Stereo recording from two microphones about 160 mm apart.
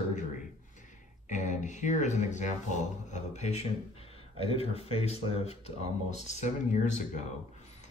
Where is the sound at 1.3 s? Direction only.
50° left (ahead or behind).